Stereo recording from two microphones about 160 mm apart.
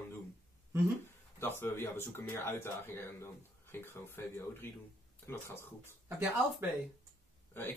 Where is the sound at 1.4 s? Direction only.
15° left (ahead or behind).